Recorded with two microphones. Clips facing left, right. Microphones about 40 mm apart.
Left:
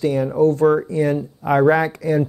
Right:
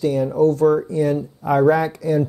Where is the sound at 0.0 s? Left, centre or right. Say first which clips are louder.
Even; left.